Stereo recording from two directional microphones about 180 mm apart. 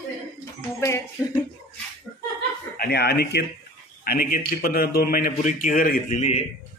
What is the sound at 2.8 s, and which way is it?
A man's voice, 65° left (ahead or behind).